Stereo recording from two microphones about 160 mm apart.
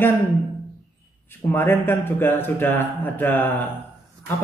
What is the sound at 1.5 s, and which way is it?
Speech, 15° left (ahead or behind).